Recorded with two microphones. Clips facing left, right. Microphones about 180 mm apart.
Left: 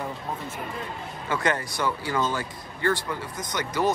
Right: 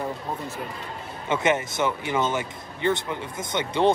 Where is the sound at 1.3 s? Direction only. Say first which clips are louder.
Right 3 dB; 20° right (ahead or behind).